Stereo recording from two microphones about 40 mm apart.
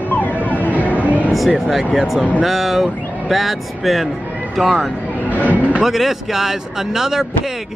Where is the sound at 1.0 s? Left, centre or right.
Right.